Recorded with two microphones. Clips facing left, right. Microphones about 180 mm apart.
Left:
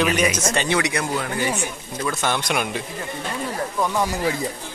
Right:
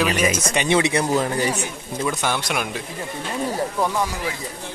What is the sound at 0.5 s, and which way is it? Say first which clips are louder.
Speech: right 3 dB; 20° right (ahead or behind).